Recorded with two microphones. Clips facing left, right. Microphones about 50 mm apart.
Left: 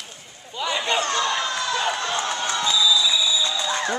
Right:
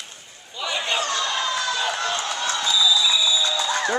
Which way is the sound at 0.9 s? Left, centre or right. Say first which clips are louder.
Left 2 dB; left.